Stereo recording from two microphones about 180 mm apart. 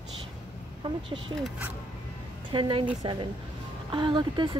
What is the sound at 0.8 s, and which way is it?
Speech, 30° right (ahead or behind).